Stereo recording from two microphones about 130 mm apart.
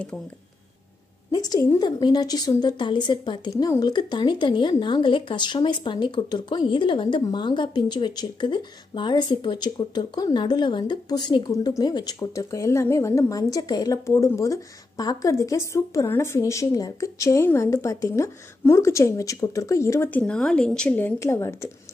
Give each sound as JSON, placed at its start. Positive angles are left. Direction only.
{"t": 1.3, "sound": "a woman's voice", "side_deg": 25}